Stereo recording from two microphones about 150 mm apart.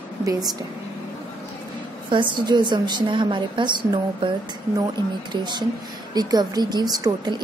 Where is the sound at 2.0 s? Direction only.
30° right (ahead or behind).